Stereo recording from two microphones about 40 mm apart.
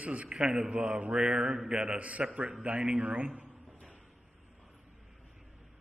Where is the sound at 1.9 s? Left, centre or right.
Right.